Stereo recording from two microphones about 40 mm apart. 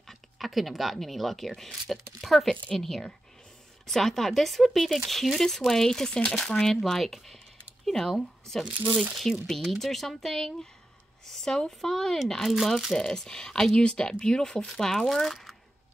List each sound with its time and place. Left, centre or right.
0.1 s speech: centre
9.3 s speech: centre
9.6 s speech: centre
12.4 s speech: centre
12.9 s speech: centre
14.7 s speech: centre